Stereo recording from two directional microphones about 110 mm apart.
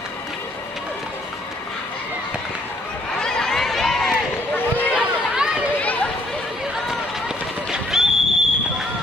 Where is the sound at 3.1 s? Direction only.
5° left (ahead or behind).